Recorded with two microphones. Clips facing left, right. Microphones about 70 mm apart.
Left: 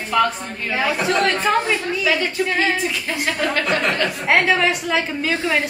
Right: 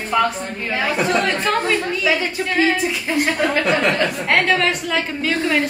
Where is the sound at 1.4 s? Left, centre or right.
Centre.